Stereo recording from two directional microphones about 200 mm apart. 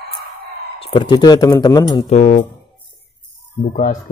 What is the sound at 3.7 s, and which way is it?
Speech, 45° left (ahead or behind).